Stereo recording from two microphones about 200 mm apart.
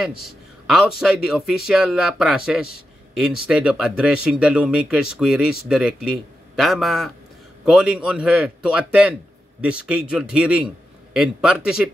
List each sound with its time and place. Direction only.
0.0 s speech: centre (ahead or behind)